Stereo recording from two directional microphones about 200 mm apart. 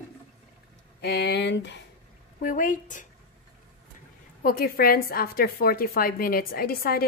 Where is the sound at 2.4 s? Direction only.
40° left (ahead or behind).